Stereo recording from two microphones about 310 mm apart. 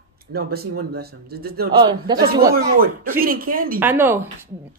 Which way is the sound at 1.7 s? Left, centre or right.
Centre.